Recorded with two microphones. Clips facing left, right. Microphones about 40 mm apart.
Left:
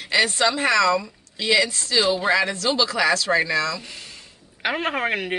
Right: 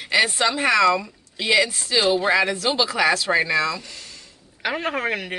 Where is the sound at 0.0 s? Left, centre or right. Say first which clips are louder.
Even; centre.